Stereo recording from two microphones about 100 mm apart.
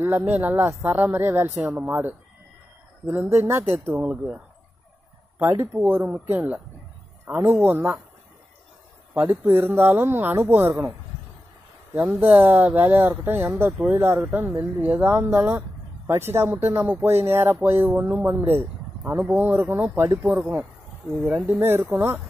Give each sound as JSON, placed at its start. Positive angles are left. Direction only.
{"t": 0.0, "sound": "speech", "side_deg": -20}
{"t": 5.4, "sound": "speech", "side_deg": -25}
{"t": 9.1, "sound": "speech", "side_deg": -20}
{"t": 11.9, "sound": "speech", "side_deg": -20}